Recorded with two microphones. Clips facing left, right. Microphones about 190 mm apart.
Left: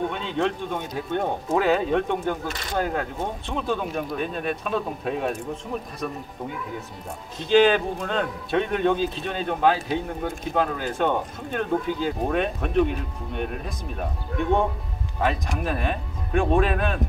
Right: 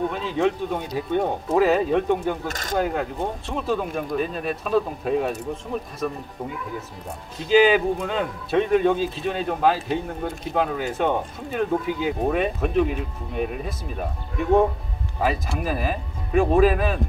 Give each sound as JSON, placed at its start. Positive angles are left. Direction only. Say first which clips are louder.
{"t": 0.1, "sound": "speech", "louder": "right 3 dB", "side_deg": -5}
{"t": 2.4, "sound": "speech", "louder": "right 1 dB", "side_deg": -45}
{"t": 2.8, "sound": "speech", "louder": "right 2 dB", "side_deg": 0}
{"t": 7.4, "sound": "speech", "louder": "right 1 dB", "side_deg": -5}